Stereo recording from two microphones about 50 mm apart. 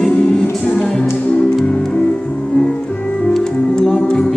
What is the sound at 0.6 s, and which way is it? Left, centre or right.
Music, centre.